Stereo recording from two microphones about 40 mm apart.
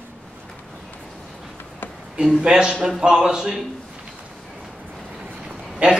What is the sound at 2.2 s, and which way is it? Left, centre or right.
A man's voice, centre.